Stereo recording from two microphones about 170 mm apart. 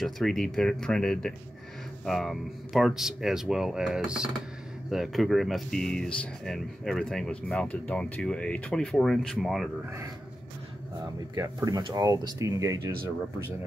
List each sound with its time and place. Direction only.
0.0 s speech: 5° left (ahead or behind)
11.3 s speech: 20° right (ahead or behind)